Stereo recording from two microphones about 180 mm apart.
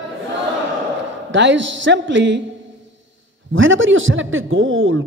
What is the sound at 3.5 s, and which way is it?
Speech, 90° right.